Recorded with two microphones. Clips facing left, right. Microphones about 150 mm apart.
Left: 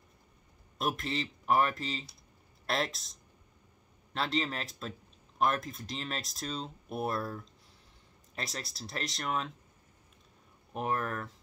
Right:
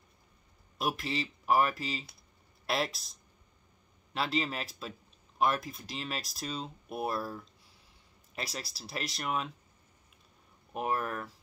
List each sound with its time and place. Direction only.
0.7 s speech: 5° right (ahead or behind)
4.1 s speech: 5° right (ahead or behind)
10.7 s speech: 5° right (ahead or behind)